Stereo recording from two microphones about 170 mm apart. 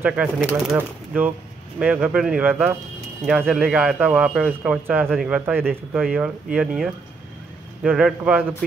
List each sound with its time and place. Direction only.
0.0 s a man's voice: 5° right (ahead or behind)